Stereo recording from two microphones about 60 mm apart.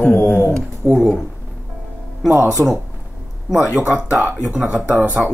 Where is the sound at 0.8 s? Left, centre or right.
Right.